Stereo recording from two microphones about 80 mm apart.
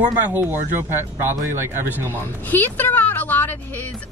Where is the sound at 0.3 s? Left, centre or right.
Right.